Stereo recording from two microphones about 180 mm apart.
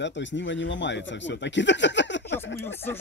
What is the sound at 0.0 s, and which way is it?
Speech, 85° left.